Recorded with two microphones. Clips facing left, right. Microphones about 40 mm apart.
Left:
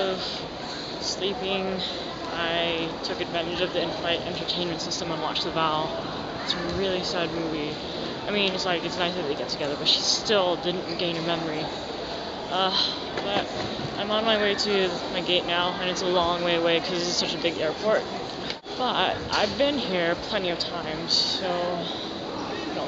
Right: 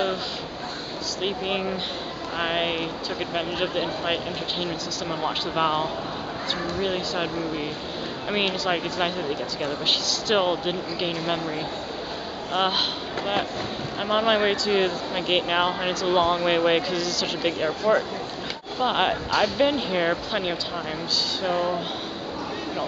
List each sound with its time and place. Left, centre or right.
1.2 s speech: centre
10.2 s speech: centre
14.0 s speech: centre